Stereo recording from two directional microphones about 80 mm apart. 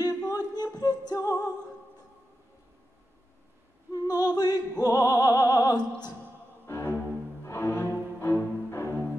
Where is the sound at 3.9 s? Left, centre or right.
Left.